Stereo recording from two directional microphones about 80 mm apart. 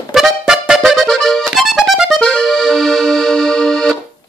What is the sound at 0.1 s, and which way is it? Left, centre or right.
Music, centre.